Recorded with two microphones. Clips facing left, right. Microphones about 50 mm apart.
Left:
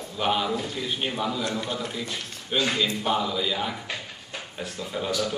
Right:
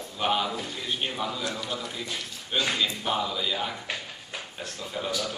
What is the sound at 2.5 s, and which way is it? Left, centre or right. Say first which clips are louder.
A man's voice: left 2 dB; centre.